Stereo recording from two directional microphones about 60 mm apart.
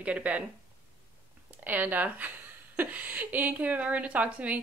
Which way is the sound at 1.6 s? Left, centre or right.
Right.